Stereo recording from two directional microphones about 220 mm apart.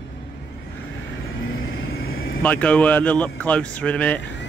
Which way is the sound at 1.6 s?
55° left (ahead or behind).